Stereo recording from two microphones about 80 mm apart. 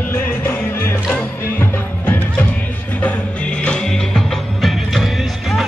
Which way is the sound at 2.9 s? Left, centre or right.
Centre.